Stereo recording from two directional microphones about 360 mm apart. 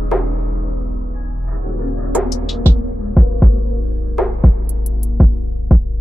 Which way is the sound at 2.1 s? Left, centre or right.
Centre.